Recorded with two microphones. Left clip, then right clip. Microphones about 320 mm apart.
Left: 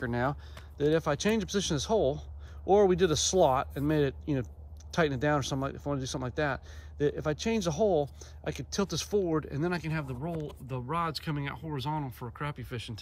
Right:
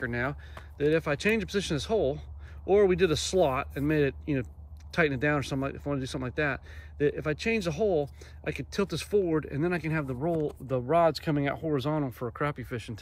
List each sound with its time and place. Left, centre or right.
0.0 s speech: centre